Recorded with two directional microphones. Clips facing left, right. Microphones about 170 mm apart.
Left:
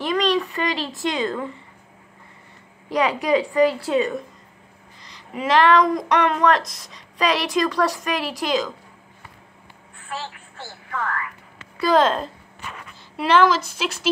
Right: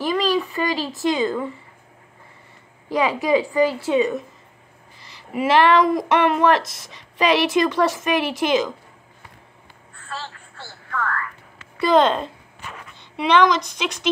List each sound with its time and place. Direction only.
0.0 s a woman's voice: centre (ahead or behind)
2.9 s speech: centre (ahead or behind)
9.9 s telephone: 15° left (ahead or behind)
11.8 s speech: centre (ahead or behind)